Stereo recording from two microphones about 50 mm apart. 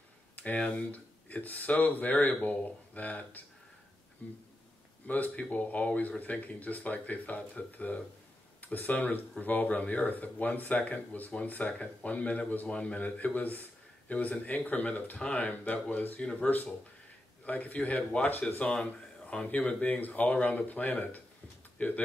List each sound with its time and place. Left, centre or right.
0.6 s a man's voice: left